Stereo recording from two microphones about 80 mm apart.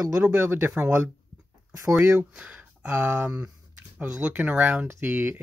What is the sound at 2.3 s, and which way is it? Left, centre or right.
Speech, centre.